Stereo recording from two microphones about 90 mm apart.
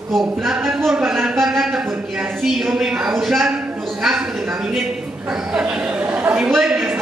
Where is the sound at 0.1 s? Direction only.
5° right (ahead or behind).